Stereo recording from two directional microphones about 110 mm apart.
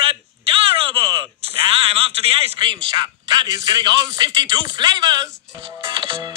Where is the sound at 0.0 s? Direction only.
55° right (ahead or behind).